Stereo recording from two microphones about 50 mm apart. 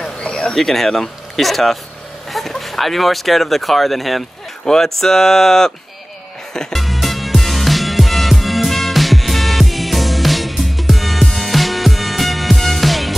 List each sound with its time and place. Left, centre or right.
0.2 s a sound: centre
0.6 s speech: centre
6.5 s music: centre
6.8 s music: centre